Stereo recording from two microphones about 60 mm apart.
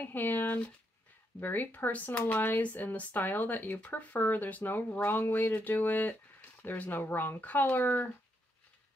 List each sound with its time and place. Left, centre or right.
0.0 s speech: left